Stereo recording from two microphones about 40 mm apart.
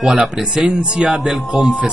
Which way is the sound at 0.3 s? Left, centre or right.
Centre.